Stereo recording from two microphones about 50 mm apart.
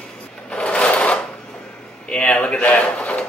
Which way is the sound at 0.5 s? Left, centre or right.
Left.